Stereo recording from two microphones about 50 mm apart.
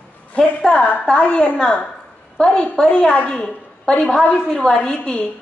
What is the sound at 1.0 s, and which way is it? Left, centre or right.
A woman's voice, left.